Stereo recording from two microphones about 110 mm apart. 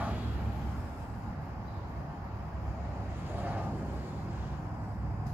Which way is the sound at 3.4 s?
15° right (ahead or behind).